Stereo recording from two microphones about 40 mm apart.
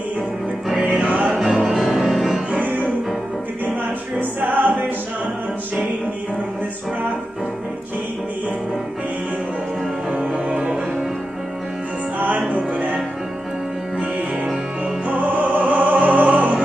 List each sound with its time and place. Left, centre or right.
1.3 s music: centre
4.2 s music: right
10.3 s music: right
12.2 s music: right
15.0 s music: right